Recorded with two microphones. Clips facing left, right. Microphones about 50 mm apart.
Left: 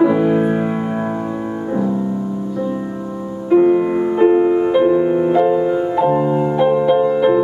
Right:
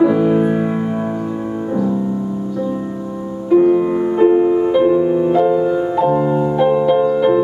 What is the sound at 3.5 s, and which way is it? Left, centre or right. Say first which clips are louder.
Music: even; centre.